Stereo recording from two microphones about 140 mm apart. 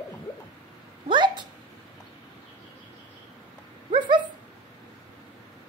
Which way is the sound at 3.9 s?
35° right (ahead or behind).